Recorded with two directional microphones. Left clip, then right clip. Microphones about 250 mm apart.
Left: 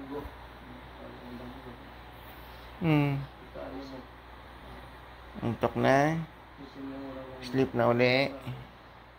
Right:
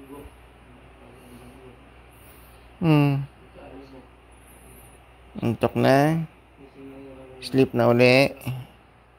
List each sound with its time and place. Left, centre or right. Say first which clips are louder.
2.8 s speech: right 7 dB; right
5.4 s speech: right 6 dB; right
7.3 s speech: right 7 dB; right